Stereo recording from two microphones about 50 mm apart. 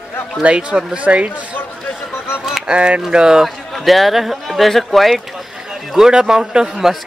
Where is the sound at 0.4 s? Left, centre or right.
Right.